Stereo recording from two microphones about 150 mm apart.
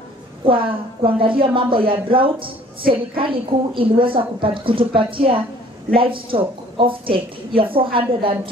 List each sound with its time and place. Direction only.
0.5 s a woman's voice: 35° right (ahead or behind)